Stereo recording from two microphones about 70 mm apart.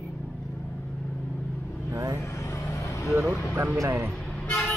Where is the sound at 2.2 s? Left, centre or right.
Left.